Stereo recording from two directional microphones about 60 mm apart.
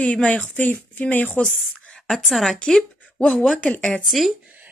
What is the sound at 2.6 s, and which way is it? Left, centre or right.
Speech, centre.